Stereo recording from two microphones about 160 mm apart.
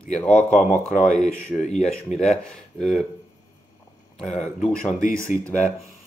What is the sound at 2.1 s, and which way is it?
Speech, 45° left (ahead or behind).